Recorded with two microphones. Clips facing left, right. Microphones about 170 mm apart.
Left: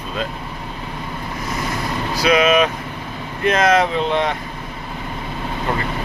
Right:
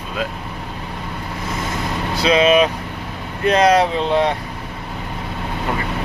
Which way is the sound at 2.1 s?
25° right (ahead or behind).